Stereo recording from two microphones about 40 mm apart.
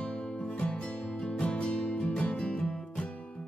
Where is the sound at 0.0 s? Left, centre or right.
Left.